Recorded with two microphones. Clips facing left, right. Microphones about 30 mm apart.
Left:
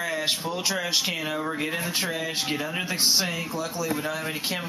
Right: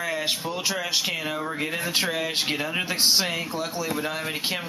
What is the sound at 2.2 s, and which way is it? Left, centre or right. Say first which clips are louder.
Speech: right 2 dB; right.